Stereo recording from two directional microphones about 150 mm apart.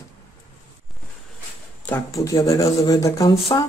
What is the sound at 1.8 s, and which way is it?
Speech, 10° left (ahead or behind).